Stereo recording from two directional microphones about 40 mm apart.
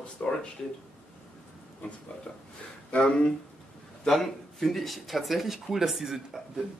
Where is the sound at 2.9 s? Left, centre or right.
Left.